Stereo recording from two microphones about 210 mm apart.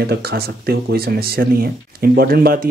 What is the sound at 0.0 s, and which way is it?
Speech, 50° right (ahead or behind).